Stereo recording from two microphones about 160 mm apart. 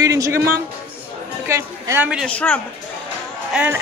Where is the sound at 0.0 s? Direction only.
20° right (ahead or behind).